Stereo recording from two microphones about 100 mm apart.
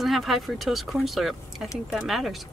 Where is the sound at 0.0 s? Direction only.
Centre (ahead or behind).